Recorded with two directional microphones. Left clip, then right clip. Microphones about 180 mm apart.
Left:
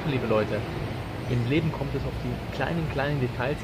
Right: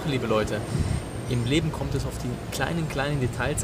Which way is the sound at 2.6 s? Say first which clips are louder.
Even; 20° right (ahead or behind).